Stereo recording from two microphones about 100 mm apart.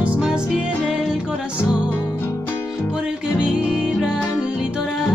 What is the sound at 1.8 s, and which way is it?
Music, 20° left (ahead or behind).